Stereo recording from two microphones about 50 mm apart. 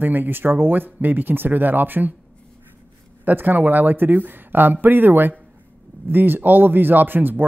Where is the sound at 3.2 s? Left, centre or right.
Right.